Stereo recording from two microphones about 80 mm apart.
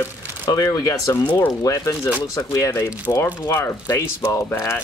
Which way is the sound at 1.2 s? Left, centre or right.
Centre.